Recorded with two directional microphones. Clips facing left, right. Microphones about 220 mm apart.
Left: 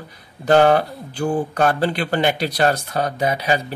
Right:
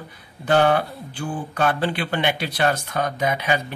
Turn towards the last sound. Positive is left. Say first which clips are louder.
# left 2 dB
turn(degrees=35)  # may be behind; listen again after turning